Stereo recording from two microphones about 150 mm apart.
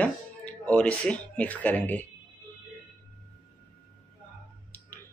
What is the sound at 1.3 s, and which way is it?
Speech, 10° left (ahead or behind).